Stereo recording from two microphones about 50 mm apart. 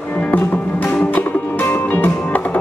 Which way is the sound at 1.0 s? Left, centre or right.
Left.